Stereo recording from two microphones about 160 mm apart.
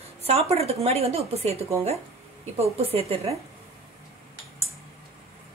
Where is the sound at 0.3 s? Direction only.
40° right (ahead or behind).